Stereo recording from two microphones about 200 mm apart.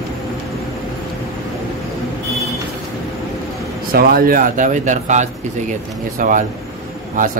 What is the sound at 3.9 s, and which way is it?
Speech, 45° right (ahead or behind).